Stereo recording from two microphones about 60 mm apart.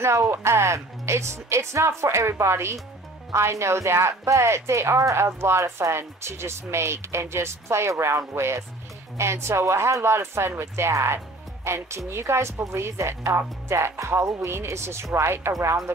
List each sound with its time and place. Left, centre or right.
0.0 s speech: right